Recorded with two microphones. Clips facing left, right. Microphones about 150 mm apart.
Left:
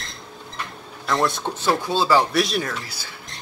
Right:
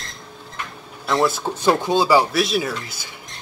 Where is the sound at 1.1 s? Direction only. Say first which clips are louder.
Right 2 dB; 5° right (ahead or behind).